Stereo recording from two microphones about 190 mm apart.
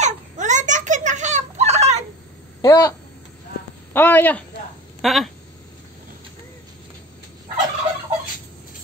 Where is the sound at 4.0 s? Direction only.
10° left (ahead or behind).